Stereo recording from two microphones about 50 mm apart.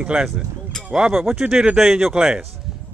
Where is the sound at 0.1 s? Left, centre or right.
Centre.